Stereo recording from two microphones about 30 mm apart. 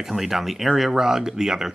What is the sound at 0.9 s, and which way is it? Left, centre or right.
Speech, centre.